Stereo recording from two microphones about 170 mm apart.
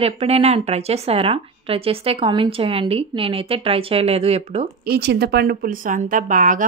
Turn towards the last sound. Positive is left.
turn(degrees=-50)  # may be behind; listen again after turning